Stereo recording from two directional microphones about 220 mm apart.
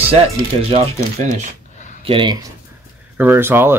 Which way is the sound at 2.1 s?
20° right (ahead or behind).